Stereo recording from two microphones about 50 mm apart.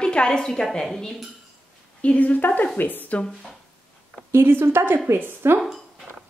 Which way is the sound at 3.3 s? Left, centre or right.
Centre.